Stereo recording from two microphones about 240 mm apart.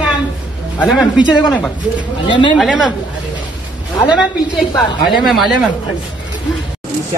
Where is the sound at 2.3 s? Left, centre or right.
Centre.